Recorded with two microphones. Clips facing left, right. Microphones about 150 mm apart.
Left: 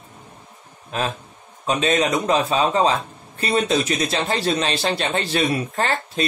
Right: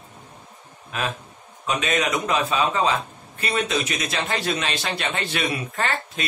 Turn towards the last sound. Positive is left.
turn(degrees=35)  # may be behind; listen again after turning